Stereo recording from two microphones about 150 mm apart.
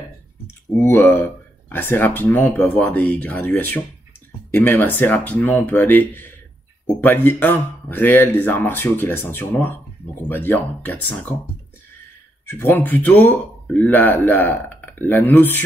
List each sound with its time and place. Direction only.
0.8 s speech: 15° left (ahead or behind)
12.4 s speech: 15° left (ahead or behind)